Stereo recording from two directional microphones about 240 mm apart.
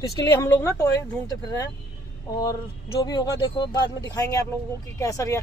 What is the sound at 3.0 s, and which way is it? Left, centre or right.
Speech, centre.